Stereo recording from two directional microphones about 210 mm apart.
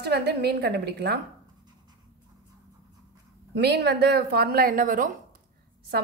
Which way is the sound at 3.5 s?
50° right (ahead or behind).